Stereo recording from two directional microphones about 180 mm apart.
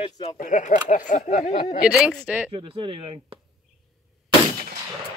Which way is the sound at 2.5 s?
30° right (ahead or behind).